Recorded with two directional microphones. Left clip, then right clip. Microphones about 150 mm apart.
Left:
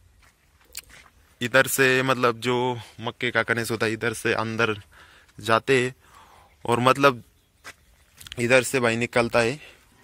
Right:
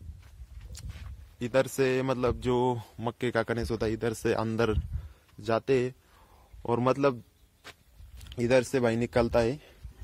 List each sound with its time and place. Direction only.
1.4 s speech: 5° right (ahead or behind)
2.5 s speech: 35° right (ahead or behind)
3.4 s speech: 15° right (ahead or behind)
4.0 s speech: 30° right (ahead or behind)
5.4 s speech: 5° right (ahead or behind)
8.3 s speech: 15° right (ahead or behind)